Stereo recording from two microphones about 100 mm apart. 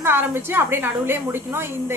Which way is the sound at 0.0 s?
20° right (ahead or behind).